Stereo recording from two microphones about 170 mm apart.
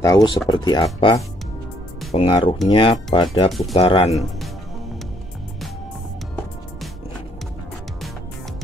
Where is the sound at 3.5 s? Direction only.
Centre (ahead or behind).